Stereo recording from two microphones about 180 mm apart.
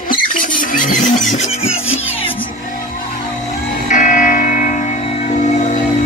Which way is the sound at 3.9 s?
45° left (ahead or behind).